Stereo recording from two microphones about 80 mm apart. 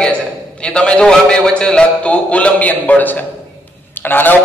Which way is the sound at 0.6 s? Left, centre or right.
Centre.